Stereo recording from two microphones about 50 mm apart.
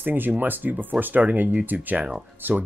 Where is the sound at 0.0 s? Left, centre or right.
Right.